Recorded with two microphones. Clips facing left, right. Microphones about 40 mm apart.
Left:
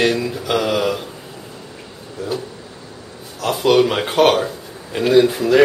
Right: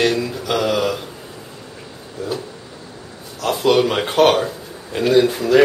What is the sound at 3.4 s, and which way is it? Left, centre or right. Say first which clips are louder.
Speech: left 1 dB; centre.